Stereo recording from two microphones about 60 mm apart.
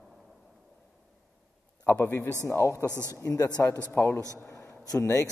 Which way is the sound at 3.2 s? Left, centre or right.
Left.